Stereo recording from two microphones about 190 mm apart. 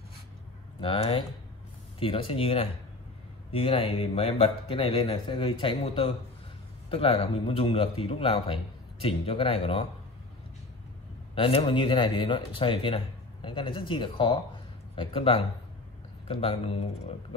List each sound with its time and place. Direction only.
0.7 s speech: 30° left (ahead or behind)
11.3 s speech: 30° left (ahead or behind)